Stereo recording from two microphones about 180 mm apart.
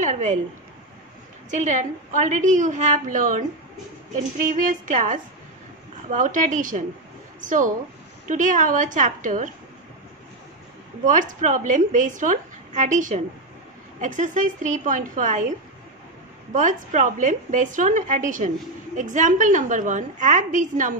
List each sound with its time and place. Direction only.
0.0 s a woman's voice: 40° right (ahead or behind)
1.5 s a woman's voice: 45° right (ahead or behind)
4.5 s a woman's voice: 45° right (ahead or behind)
11.1 s a woman's voice: 45° right (ahead or behind)
16.5 s a woman's voice: 45° right (ahead or behind)